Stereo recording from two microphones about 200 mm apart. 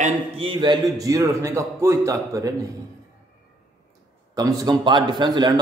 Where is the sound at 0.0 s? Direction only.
25° right (ahead or behind).